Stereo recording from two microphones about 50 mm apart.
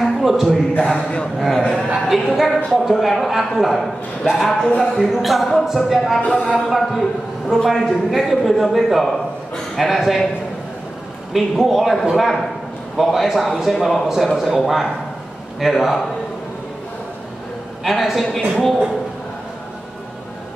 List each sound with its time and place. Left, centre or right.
0.0 s a sound: centre
1.6 s a sound: centre
2.3 s a man's voice: centre
4.6 s speech: centre
4.9 s a man's voice: centre
6.2 s a sound: left
6.5 s a man's voice: centre
11.3 s a man's voice: centre
17.8 s a man's voice: centre